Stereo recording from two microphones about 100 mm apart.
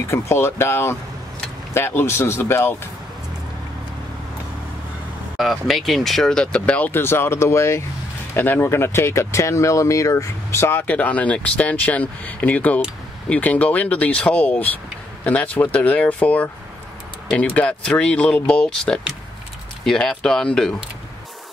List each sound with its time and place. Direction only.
0.1 s speech: 25° left (ahead or behind)
5.4 s speech: centre (ahead or behind)
17.6 s speech: 10° left (ahead or behind)